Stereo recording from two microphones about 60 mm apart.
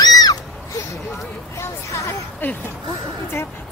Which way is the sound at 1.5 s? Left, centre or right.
Left.